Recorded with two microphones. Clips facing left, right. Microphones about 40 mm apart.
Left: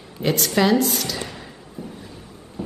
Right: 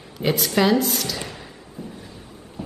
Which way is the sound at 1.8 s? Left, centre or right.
Left.